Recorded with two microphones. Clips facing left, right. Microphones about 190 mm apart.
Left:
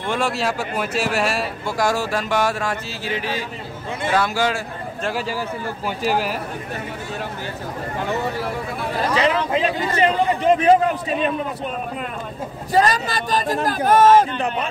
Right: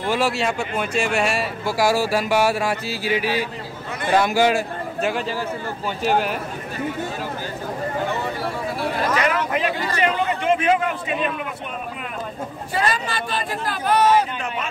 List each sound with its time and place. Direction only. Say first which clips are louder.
0.1 s speech: right 1 dB; centre (ahead or behind)
5.9 s speech: right 1 dB; 5° left (ahead or behind)
9.1 s speech: left 6 dB; 25° left (ahead or behind)
12.7 s speech: left 5 dB; 40° left (ahead or behind)